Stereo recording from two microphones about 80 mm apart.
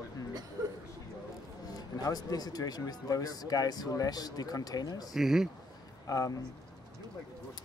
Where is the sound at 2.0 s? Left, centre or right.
Left.